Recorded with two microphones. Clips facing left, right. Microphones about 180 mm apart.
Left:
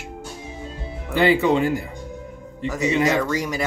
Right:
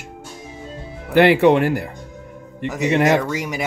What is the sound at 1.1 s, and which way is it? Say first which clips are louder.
Speech: right 5 dB; 70° right (ahead or behind).